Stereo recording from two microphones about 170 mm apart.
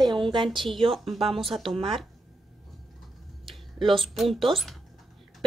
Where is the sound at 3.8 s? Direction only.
Centre (ahead or behind).